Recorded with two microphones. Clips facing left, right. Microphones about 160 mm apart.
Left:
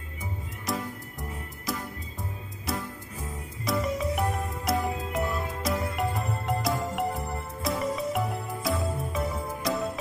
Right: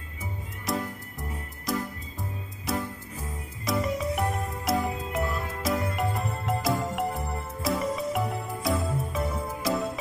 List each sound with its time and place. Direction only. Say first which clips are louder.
0.7 s cat: right 2 dB; centre (ahead or behind)
1.7 s music: right 4 dB; centre (ahead or behind)